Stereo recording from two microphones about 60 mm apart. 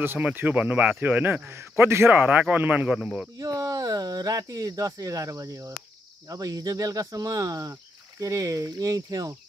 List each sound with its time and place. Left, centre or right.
0.2 s speech: right
2.5 s speech: right
3.3 s speech: right
6.2 s speech: right